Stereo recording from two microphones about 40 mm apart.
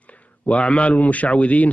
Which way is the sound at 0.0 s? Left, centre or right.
Left.